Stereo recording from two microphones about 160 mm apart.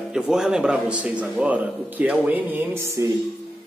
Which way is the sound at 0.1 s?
5° right (ahead or behind).